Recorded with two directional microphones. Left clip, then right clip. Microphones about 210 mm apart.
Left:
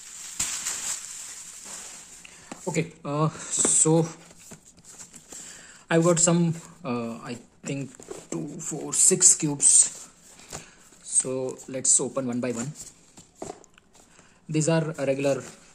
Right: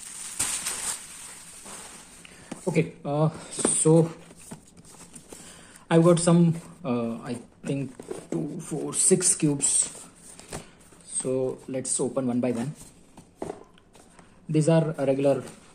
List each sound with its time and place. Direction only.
2.6 s speech: 10° left (ahead or behind)
3.0 s speech: 25° left (ahead or behind)
5.9 s speech: 15° left (ahead or behind)
11.1 s speech: 15° left (ahead or behind)
14.5 s speech: 15° left (ahead or behind)